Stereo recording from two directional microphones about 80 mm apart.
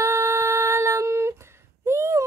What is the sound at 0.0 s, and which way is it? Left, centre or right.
Music, right.